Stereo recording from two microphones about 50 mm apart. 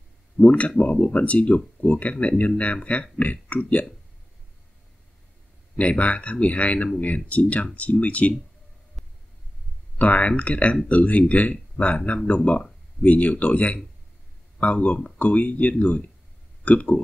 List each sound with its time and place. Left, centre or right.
0.4 s speech: left
5.8 s speech: left
9.0 s a sound: centre
9.9 s speech: left